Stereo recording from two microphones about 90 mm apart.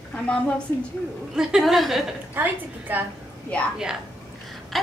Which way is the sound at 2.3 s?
20° right (ahead or behind).